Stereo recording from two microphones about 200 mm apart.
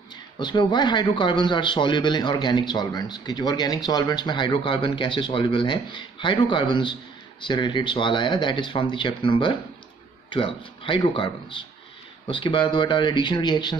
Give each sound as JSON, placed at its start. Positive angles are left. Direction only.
{"t": 0.4, "sound": "a man's voice", "side_deg": 25}